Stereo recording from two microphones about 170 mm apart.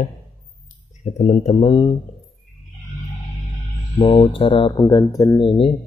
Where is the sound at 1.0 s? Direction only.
35° left (ahead or behind).